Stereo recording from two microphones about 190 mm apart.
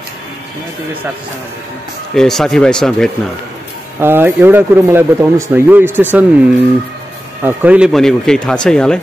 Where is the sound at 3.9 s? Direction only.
10° right (ahead or behind).